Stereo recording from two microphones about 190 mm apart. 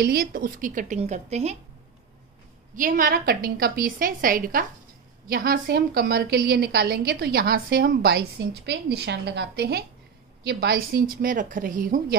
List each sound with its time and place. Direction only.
0.0 s a woman's voice: 50° right (ahead or behind)
2.7 s a woman's voice: 45° right (ahead or behind)